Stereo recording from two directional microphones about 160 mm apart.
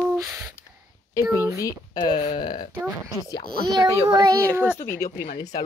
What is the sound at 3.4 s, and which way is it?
Speech, 70° right (ahead or behind).